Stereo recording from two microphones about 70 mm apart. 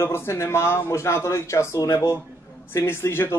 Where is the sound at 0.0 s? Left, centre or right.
Left.